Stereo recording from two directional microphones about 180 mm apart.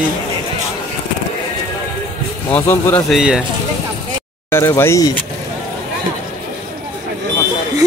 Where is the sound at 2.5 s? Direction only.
15° left (ahead or behind).